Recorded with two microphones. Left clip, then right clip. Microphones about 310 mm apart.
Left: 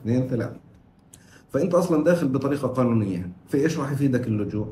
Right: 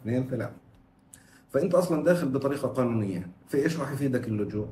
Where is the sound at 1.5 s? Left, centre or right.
Centre.